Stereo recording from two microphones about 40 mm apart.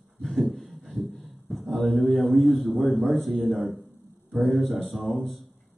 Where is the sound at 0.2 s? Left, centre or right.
Centre.